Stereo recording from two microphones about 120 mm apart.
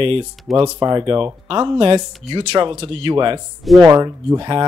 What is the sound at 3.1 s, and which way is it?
Speech, 35° right (ahead or behind).